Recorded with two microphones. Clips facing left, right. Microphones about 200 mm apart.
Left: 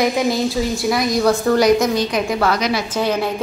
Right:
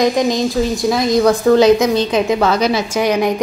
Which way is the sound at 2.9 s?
15° right (ahead or behind).